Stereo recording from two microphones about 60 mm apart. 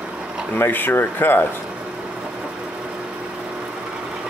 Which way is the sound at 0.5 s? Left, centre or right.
Left.